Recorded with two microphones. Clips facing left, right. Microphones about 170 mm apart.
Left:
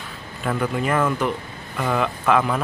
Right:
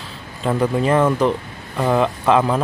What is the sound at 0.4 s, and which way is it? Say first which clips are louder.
Speech: right 5 dB; 30° right (ahead or behind).